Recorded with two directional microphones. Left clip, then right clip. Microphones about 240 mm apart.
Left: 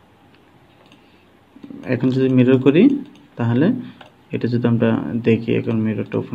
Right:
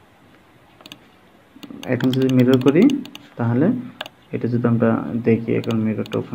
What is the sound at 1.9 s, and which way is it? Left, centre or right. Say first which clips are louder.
Speech: left 1 dB; centre.